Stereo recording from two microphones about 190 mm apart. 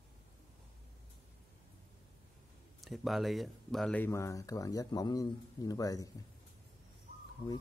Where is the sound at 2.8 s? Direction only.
Centre (ahead or behind); by 6.1 s 20° left (ahead or behind).